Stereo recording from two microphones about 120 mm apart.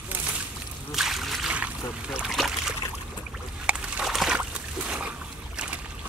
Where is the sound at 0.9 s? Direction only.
Centre (ahead or behind).